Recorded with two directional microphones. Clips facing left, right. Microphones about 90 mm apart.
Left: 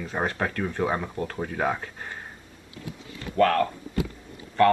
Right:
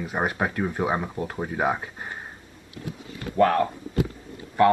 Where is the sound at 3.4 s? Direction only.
20° right (ahead or behind).